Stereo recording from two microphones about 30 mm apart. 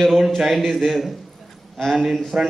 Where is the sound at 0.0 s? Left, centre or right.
Centre.